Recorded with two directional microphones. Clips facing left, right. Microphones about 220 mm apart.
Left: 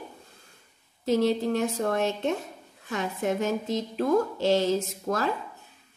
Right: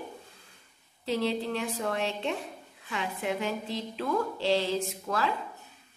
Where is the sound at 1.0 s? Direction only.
40° left (ahead or behind).